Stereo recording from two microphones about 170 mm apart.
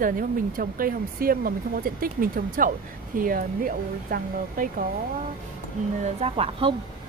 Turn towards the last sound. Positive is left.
turn(degrees=-35)  # may be behind; listen again after turning